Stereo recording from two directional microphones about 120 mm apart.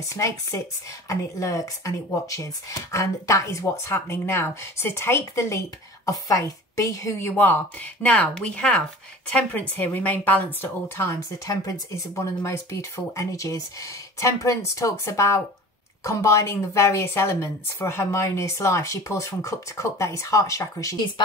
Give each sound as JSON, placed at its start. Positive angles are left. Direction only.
{"t": 0.0, "sound": "a woman's voice", "side_deg": 25}